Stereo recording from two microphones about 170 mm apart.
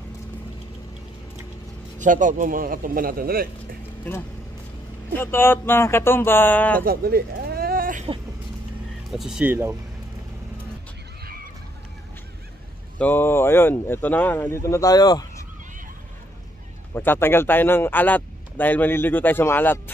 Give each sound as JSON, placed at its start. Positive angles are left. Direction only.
{"t": 2.0, "sound": "a man's voice", "side_deg": -50}
{"t": 5.1, "sound": "a man's voice", "side_deg": 15}
{"t": 6.8, "sound": "a sound", "side_deg": -60}
{"t": 9.1, "sound": "speech", "side_deg": 0}
{"t": 13.0, "sound": "a man's voice", "side_deg": 10}
{"t": 16.9, "sound": "a man's voice", "side_deg": 10}